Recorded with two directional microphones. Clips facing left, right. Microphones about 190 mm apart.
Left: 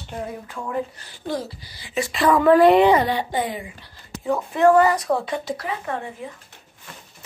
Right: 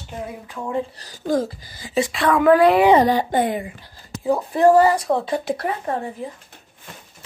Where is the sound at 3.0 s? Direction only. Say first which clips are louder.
Right 5 dB; 45° right (ahead or behind).